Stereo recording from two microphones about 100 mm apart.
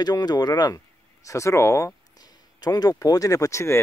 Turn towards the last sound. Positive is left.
turn(degrees=30)  # may be behind; listen again after turning